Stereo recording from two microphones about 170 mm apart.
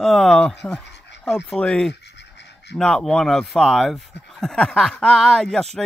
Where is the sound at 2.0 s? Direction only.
90° left.